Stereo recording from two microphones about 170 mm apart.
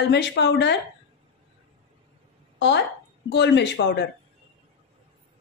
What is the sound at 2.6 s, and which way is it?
A woman's voice, 90° left.